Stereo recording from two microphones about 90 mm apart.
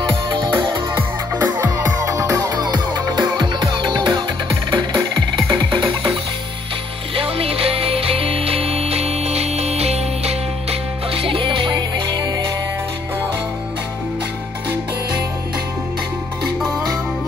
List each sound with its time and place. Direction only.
0.6 s music: 50° right (ahead or behind)
1.4 s music: 40° right (ahead or behind); by 5.9 s 60° right (ahead or behind)
7.2 s music: 90° right
11.1 s music: 85° right; by 12.2 s 60° right (ahead or behind)